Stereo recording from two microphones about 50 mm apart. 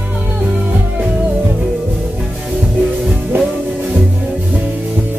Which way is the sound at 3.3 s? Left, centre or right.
Right.